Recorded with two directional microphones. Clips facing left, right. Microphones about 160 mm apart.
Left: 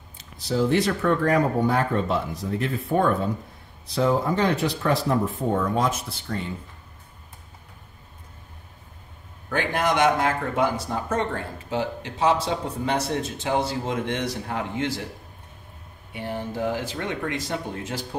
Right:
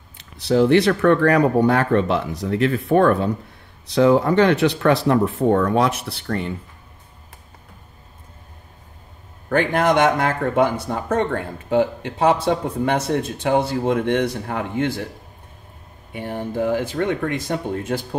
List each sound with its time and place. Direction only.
0.2 s speech: 65° right (ahead or behind)
9.5 s a man's voice: 55° right (ahead or behind)
16.1 s speech: 50° right (ahead or behind)